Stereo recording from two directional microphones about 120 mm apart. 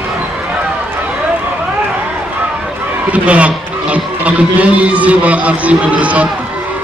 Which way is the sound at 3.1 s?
10° right (ahead or behind).